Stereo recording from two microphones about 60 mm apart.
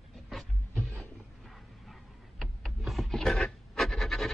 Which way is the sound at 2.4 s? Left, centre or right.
Centre.